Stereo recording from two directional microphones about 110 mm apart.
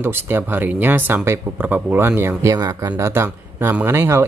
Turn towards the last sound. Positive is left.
turn(degrees=-20)  # may be behind; listen again after turning